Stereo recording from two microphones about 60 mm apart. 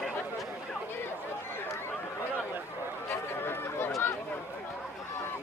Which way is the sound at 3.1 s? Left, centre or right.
Left.